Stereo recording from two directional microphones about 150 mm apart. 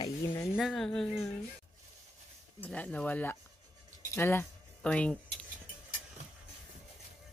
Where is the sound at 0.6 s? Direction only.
Centre (ahead or behind).